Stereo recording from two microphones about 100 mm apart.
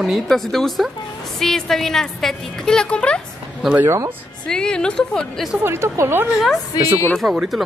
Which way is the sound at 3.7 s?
30° right (ahead or behind).